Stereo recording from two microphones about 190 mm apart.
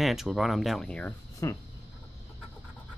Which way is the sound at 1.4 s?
15° left (ahead or behind).